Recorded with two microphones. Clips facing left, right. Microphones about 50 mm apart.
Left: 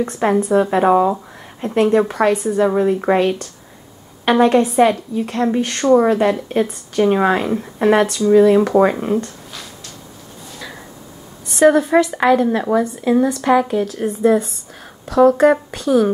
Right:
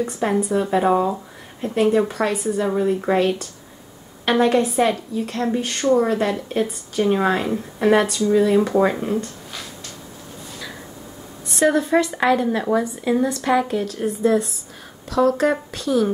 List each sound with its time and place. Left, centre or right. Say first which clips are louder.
0.2 s speech: left 6 dB; left
1.8 s a woman's voice: left 4 dB; centre
3.0 s speech: left 3 dB; centre
4.3 s a woman's voice: left 4 dB; centre
11.5 s a woman's voice: left 5 dB; centre